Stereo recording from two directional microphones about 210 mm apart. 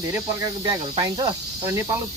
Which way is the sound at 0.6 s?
20° right (ahead or behind).